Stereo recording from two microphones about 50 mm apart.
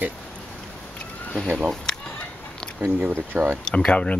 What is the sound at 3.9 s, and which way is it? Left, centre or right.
Speech, left.